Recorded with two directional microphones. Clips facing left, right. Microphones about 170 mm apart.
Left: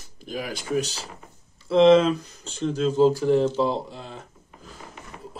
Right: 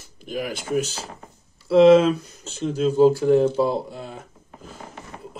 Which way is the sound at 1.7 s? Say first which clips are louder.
Right 3 dB; 5° right (ahead or behind).